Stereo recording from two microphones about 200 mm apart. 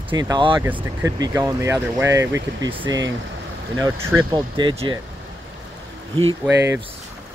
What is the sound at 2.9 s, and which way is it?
Speech, 70° right (ahead or behind).